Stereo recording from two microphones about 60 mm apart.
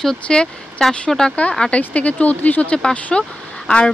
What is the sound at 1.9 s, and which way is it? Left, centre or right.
A woman's voice, left.